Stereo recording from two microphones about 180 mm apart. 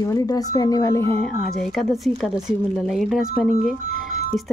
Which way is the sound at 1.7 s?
Centre (ahead or behind).